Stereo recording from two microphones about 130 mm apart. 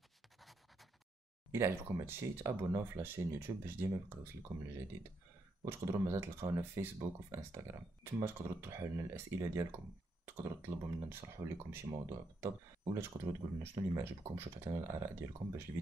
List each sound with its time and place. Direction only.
0.4 s dog: centre (ahead or behind)
1.5 s speech: 20° right (ahead or behind)
5.7 s speech: 20° right (ahead or behind)